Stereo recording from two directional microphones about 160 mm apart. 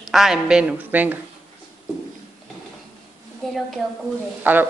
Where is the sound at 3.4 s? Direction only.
Centre (ahead or behind).